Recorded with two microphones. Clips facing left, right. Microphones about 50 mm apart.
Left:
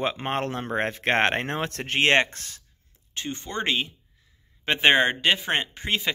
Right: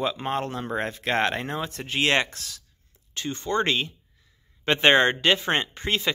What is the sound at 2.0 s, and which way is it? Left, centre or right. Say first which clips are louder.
Speech: left 2 dB; left.